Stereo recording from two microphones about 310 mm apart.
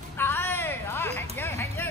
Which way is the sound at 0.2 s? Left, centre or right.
Centre.